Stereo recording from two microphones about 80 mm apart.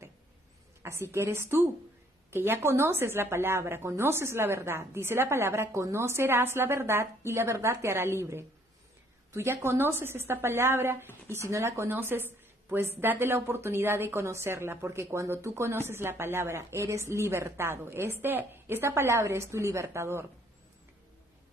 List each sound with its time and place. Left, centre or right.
0.8 s a woman's voice: right